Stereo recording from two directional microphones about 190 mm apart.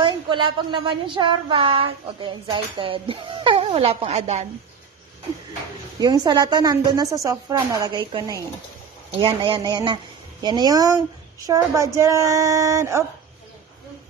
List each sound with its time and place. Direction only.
0.0 s speech: 25° right (ahead or behind)
5.9 s speech: 20° right (ahead or behind)
9.2 s speech: 25° right (ahead or behind)